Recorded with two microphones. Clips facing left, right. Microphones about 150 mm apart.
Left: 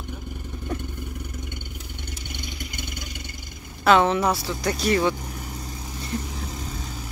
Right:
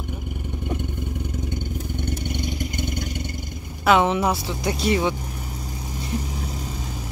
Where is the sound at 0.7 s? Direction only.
15° right (ahead or behind).